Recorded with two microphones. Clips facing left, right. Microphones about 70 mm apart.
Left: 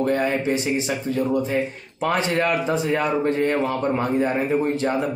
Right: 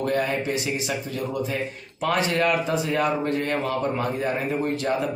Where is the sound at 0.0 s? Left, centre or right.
Left.